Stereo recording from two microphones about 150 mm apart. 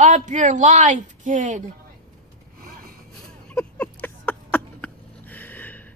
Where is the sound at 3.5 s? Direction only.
10° left (ahead or behind).